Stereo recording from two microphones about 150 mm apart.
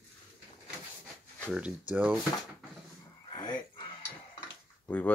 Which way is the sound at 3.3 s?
30° left (ahead or behind).